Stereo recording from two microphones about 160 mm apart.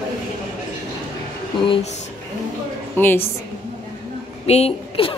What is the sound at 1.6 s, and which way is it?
Speech, 35° left (ahead or behind).